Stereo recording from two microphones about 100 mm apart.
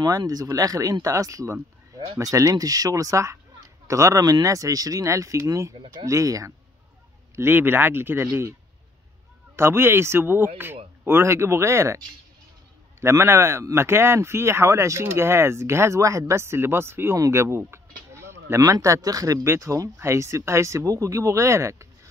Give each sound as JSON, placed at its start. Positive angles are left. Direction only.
{"t": 0.0, "sound": "speech", "side_deg": -40}
{"t": 7.3, "sound": "speech", "side_deg": -20}
{"t": 9.6, "sound": "speech", "side_deg": -25}
{"t": 13.0, "sound": "speech", "side_deg": -30}